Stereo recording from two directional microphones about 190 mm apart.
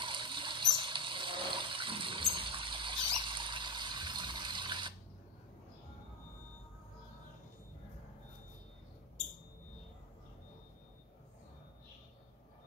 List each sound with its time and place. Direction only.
0.0 s water: 25° right (ahead or behind)